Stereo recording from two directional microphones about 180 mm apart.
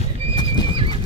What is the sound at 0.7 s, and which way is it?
Horse, 30° right (ahead or behind).